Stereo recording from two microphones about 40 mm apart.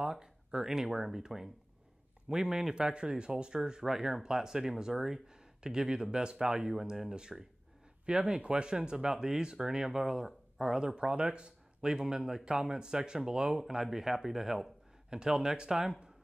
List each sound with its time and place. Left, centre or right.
0.0 s speech: centre
11.0 s speech: right; by 14.7 s centre
15.0 s speech: centre